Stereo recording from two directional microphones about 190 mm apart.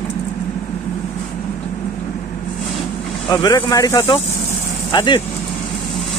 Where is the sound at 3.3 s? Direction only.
20° left (ahead or behind).